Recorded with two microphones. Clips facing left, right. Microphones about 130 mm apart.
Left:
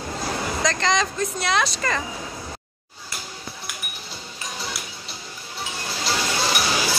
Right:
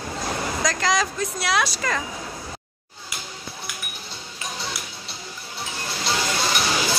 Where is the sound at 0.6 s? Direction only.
5° right (ahead or behind).